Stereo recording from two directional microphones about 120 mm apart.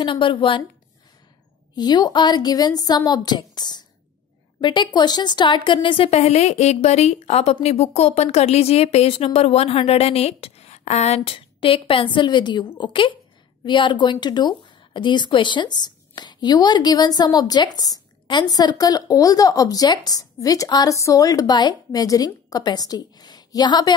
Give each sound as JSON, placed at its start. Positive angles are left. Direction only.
{"t": 0.0, "sound": "a woman's voice", "side_deg": 40}
{"t": 1.8, "sound": "a woman's voice", "side_deg": 35}
{"t": 6.0, "sound": "a woman's voice", "side_deg": 60}